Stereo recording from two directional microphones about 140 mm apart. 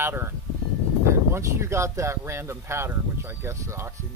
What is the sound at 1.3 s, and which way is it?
Speech, 20° right (ahead or behind).